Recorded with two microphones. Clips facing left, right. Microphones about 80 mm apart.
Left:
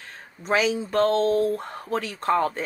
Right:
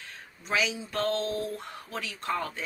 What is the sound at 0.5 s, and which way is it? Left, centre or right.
Speech, left.